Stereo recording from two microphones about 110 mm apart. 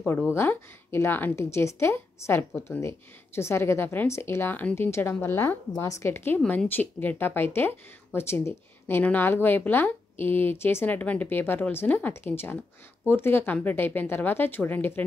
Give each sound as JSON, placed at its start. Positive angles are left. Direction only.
{"t": 0.3, "sound": "speech", "side_deg": 25}